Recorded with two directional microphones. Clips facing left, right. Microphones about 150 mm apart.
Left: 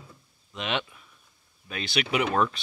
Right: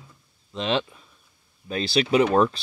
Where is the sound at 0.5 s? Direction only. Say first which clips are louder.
Right 6 dB; 30° right (ahead or behind).